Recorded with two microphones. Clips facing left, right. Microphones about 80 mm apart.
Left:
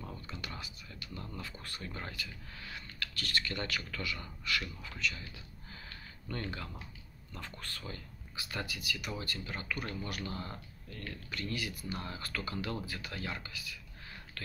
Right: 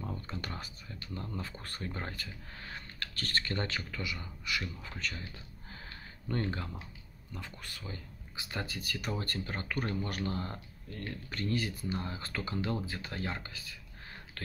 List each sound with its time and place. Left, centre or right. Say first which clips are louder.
0.3 s speech: right 3 dB; right
3.9 s speech: even; centre
4.8 s a sound: left 1 dB; right
7.3 s speech: even; centre; by 13.7 s right